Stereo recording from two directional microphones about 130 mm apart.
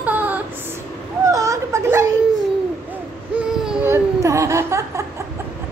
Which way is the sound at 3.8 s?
20° right (ahead or behind).